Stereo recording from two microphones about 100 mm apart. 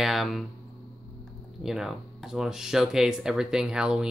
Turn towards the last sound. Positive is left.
turn(degrees=-5)  # may be behind; listen again after turning